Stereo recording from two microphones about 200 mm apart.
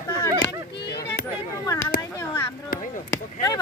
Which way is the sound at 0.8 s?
55° left (ahead or behind).